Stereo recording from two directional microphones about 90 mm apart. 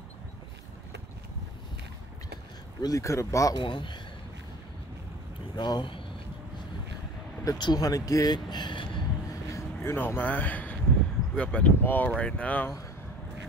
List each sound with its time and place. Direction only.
2.8 s speech: 40° left (ahead or behind)
3.5 s speech: 60° left (ahead or behind)
5.6 s speech: 55° left (ahead or behind)
7.4 s speech: 50° left (ahead or behind)
9.3 s vehicle: 35° left (ahead or behind)
9.9 s a man's voice: 20° left (ahead or behind)